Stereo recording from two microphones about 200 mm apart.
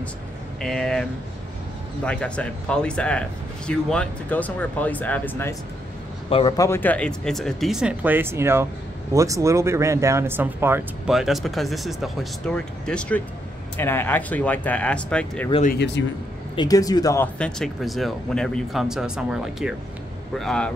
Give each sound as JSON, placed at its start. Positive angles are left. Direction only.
{"t": 0.6, "sound": "speech", "side_deg": 0}
{"t": 2.0, "sound": "speech", "side_deg": 5}
{"t": 6.3, "sound": "speech", "side_deg": 20}
{"t": 15.6, "sound": "speech", "side_deg": 55}
{"t": 16.5, "sound": "speech", "side_deg": 20}